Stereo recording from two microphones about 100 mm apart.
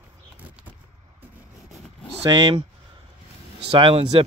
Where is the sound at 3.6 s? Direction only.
70° right (ahead or behind).